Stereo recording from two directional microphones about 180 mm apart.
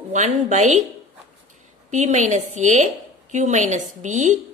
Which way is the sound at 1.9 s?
40° right (ahead or behind).